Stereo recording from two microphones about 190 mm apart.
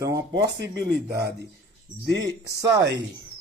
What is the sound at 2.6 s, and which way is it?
Speech, 65° right (ahead or behind).